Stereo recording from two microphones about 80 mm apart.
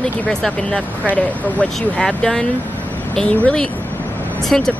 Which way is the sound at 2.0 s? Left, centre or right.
Centre.